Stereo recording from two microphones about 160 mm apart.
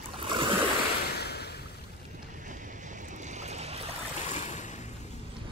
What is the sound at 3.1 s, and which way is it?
Boat, 50° right (ahead or behind).